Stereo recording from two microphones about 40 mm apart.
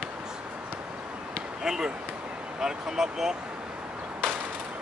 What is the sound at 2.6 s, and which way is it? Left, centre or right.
Speech, centre.